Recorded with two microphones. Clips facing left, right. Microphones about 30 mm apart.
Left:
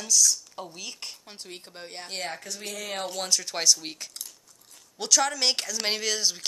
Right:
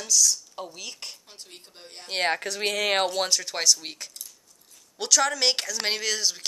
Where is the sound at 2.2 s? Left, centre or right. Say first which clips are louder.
Right 12 dB; right.